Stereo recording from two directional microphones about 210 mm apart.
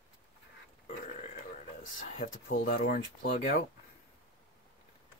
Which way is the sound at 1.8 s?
40° left (ahead or behind).